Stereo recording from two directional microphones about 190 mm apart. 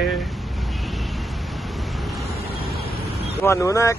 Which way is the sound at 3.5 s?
15° left (ahead or behind).